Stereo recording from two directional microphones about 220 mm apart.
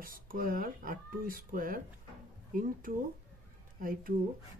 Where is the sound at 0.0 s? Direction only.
40° right (ahead or behind).